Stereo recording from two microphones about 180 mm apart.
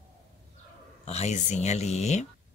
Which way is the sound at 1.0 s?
40° left (ahead or behind).